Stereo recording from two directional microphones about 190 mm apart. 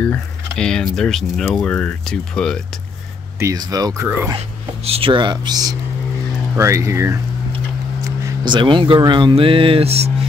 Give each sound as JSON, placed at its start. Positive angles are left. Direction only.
{"t": 0.0, "sound": "speech", "side_deg": 5}
{"t": 3.3, "sound": "speech", "side_deg": -20}
{"t": 4.8, "sound": "speech", "side_deg": -30}
{"t": 8.5, "sound": "speech", "side_deg": -25}